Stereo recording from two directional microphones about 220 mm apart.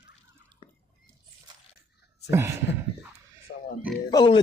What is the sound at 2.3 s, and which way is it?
Speech, 10° right (ahead or behind).